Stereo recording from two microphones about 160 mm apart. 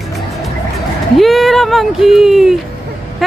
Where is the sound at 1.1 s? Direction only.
Centre (ahead or behind).